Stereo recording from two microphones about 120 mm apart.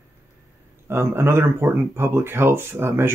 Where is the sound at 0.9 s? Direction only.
20° right (ahead or behind).